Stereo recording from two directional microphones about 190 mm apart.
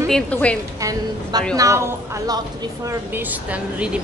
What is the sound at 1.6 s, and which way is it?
Speech, 15° right (ahead or behind).